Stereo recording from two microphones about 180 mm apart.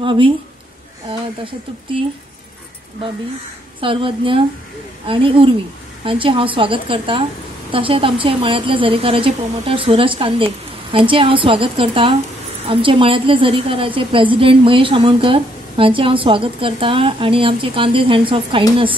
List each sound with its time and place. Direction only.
0.0 s a woman's voice: 30° right (ahead or behind)
1.4 s a woman's voice: 30° right (ahead or behind)
3.8 s a woman's voice: 30° right (ahead or behind)